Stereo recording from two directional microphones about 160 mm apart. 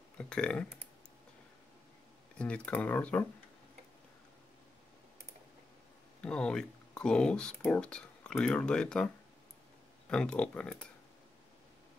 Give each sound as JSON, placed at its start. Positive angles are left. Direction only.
{"t": 0.2, "sound": "speech", "side_deg": 5}
{"t": 2.3, "sound": "speech", "side_deg": 5}
{"t": 6.2, "sound": "speech", "side_deg": 5}